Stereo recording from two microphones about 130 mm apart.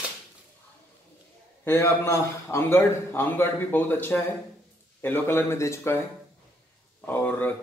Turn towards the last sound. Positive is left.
turn(degrees=15)  # may be behind; listen again after turning